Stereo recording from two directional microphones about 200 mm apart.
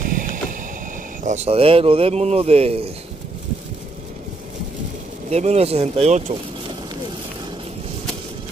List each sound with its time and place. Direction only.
0.1 s vehicle: 40° right (ahead or behind)
1.2 s speech: 35° right (ahead or behind)
5.3 s speech: 35° right (ahead or behind)